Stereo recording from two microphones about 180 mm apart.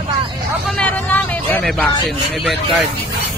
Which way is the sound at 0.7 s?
10° left (ahead or behind).